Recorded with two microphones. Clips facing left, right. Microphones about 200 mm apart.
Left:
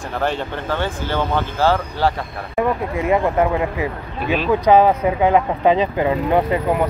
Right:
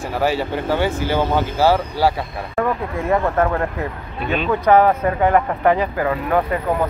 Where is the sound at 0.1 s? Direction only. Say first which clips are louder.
Right 2 dB; 5° right (ahead or behind).